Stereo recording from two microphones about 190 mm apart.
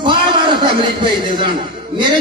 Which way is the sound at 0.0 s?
25° right (ahead or behind).